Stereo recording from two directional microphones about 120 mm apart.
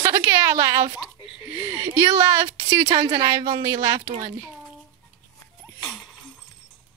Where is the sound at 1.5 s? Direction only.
20° right (ahead or behind).